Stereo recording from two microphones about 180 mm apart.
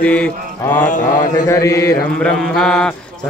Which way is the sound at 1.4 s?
15° left (ahead or behind).